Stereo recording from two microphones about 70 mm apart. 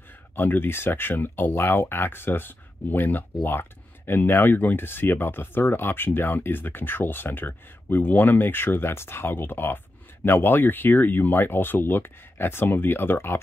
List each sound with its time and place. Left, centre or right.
0.4 s speech: left